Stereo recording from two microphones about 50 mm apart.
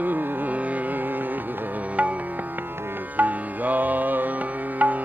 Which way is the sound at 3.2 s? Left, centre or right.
Right.